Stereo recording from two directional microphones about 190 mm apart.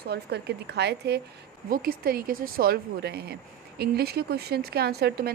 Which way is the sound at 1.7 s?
50° right (ahead or behind).